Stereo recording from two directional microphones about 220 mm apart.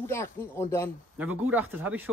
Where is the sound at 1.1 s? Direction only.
5° right (ahead or behind).